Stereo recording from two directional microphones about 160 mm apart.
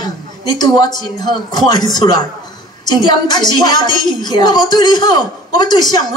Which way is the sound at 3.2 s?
25° left (ahead or behind).